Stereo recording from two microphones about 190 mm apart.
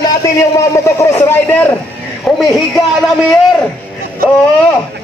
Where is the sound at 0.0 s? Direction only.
15° left (ahead or behind); by 2.4 s centre (ahead or behind).